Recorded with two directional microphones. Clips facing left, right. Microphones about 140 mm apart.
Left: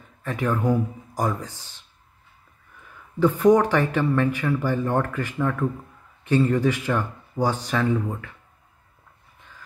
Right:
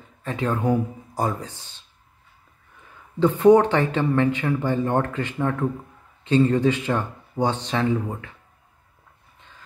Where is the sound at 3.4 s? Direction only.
25° right (ahead or behind).